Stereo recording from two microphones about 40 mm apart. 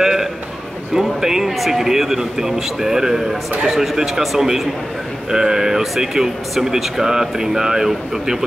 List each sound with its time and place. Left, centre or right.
0.0 s a sound: centre
0.9 s speech: centre
5.3 s speech: centre